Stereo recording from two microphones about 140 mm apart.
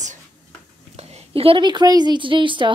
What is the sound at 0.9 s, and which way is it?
A woman's voice, 45° right (ahead or behind).